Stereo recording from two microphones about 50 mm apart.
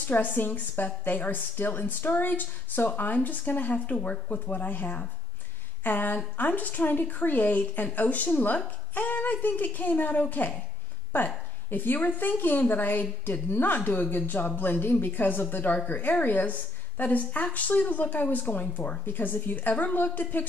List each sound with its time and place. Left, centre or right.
0.1 s a woman's voice: left
4.6 s a woman's voice: left